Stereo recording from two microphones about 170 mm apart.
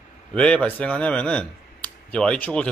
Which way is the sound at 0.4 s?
5° left (ahead or behind).